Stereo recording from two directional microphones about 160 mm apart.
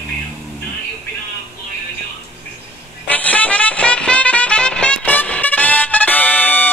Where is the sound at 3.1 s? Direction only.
10° left (ahead or behind).